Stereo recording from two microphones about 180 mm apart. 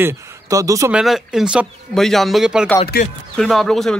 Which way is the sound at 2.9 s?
55° left (ahead or behind).